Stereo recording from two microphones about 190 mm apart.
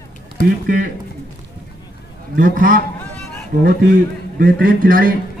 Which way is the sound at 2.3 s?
45° right (ahead or behind).